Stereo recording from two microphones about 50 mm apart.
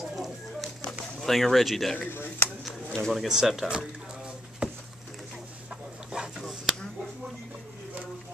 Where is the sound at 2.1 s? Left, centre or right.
Left.